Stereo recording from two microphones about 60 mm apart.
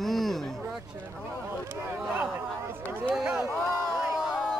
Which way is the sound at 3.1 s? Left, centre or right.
Centre.